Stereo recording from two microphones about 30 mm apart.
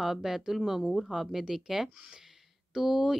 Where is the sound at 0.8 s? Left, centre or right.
Centre.